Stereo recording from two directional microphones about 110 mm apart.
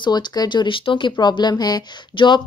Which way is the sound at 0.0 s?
40° left (ahead or behind).